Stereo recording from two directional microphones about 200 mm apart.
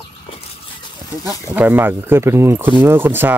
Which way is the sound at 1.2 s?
10° right (ahead or behind).